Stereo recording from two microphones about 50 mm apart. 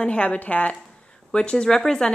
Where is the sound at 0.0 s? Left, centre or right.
Left.